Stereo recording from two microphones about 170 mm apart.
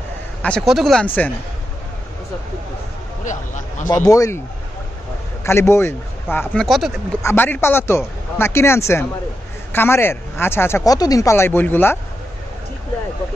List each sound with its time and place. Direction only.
0.4 s speech: 5° left (ahead or behind)
3.3 s a man's voice: 45° left (ahead or behind)
3.9 s a man's voice: 20° left (ahead or behind)
5.4 s speech: 15° left (ahead or behind)
7.2 s speech: 10° left (ahead or behind)